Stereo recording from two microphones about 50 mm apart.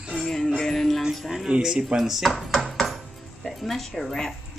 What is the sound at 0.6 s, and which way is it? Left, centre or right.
Music, centre.